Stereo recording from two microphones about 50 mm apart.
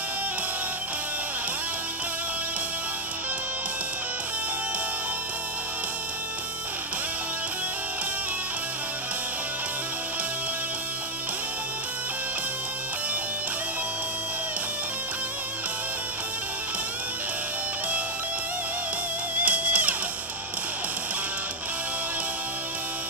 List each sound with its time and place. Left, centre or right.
19.3 s music: right